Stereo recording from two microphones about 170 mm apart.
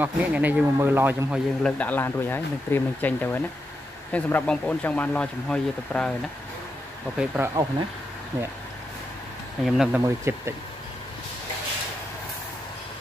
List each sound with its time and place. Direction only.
0.0 s a man's voice: 10° right (ahead or behind)
1.6 s speech: 10° left (ahead or behind)
7.2 s a man's voice: 10° right (ahead or behind)
9.7 s speech: 5° right (ahead or behind)
10.0 s a man's voice: 15° right (ahead or behind)